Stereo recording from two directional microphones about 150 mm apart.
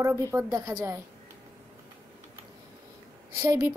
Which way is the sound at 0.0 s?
20° right (ahead or behind).